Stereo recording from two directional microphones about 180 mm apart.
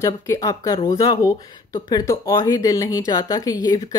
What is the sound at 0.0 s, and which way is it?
Speech, 20° left (ahead or behind).